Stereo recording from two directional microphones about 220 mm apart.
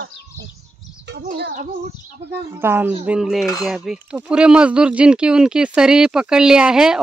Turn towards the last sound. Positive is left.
turn(degrees=-5)  # may be behind; listen again after turning